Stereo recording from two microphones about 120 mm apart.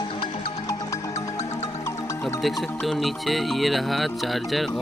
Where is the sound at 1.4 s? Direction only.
65° left (ahead or behind).